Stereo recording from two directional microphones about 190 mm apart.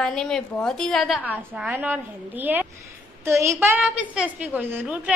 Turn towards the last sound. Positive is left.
turn(degrees=-10)  # may be behind; listen again after turning